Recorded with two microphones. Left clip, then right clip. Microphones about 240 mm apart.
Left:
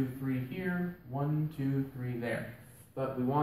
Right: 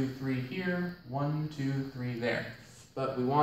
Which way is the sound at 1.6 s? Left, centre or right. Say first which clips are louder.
Even; centre.